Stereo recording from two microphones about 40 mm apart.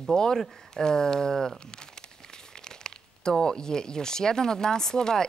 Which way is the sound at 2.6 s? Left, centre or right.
Centre.